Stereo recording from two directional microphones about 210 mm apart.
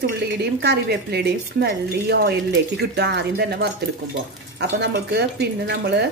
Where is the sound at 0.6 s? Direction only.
50° right (ahead or behind).